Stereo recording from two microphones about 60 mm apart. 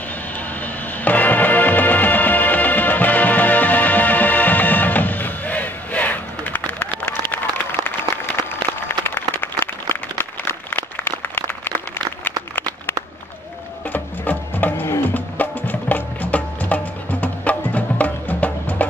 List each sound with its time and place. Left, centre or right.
0.6 s music: left
8.8 s a sound: left
13.9 s music: left